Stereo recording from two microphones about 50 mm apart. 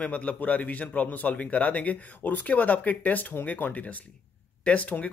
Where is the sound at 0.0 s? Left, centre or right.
Left.